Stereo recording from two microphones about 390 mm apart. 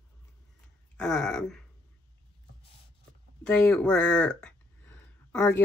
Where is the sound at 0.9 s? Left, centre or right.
Centre.